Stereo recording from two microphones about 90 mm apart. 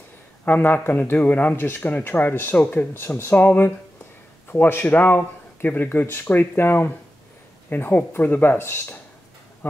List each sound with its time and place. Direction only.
0.5 s speech: 20° left (ahead or behind)